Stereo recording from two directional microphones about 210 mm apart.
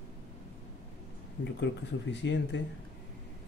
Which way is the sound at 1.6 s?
55° left (ahead or behind).